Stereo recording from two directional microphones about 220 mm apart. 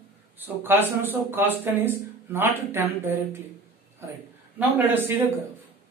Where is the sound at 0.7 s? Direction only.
10° right (ahead or behind).